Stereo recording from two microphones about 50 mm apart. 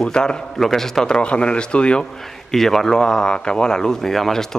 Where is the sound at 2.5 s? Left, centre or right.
Centre.